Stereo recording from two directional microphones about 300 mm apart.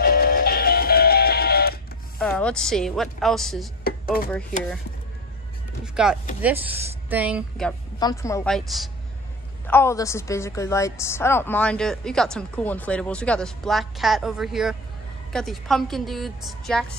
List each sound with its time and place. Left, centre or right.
0.0 s music: left
2.1 s a woman's voice: centre
3.8 s a sound: left
6.0 s a woman's voice: centre
8.0 s a woman's voice: centre